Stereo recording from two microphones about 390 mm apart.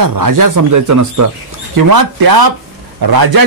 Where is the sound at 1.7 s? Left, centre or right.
Right.